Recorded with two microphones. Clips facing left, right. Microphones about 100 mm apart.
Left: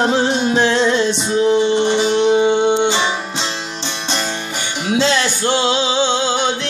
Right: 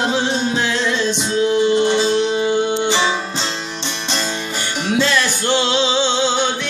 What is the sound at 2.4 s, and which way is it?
Speech, 25° left (ahead or behind).